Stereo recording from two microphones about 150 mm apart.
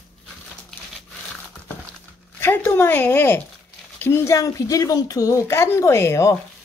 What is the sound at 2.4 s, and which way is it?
Speech, 15° left (ahead or behind).